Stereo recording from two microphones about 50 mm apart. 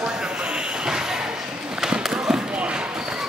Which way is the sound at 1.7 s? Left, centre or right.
Centre.